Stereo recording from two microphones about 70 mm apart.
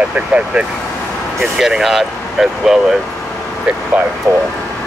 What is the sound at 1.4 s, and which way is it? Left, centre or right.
Speech, centre.